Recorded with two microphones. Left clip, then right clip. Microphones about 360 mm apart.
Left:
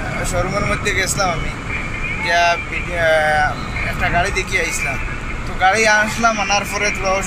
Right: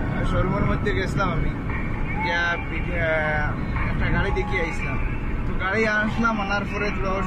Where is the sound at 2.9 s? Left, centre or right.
Left.